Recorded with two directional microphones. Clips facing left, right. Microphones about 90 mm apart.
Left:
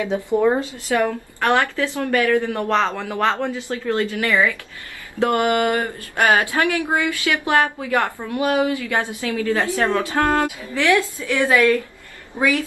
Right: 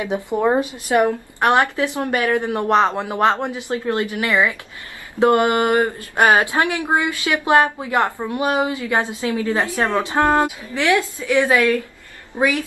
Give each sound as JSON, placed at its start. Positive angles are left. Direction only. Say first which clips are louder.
{"t": 0.0, "sound": "speech", "louder": "left 1 dB", "side_deg": -20}